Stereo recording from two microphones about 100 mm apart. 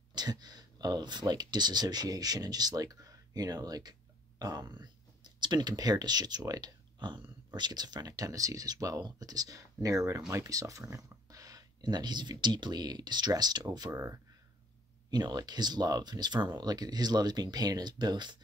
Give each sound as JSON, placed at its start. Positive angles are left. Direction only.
{"t": 0.1, "sound": "speech", "side_deg": -45}